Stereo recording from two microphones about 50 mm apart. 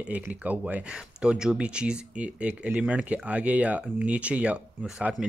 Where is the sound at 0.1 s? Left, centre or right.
Right.